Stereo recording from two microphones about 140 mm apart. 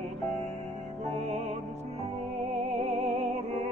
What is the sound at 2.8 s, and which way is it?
Music, 50° right (ahead or behind).